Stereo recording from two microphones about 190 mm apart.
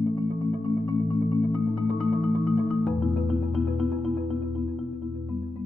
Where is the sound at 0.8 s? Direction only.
Centre (ahead or behind).